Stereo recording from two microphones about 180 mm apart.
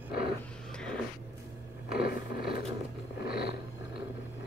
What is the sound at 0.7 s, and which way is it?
Vehicle, 5° left (ahead or behind).